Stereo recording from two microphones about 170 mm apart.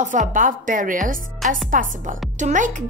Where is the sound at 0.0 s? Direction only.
50° right (ahead or behind).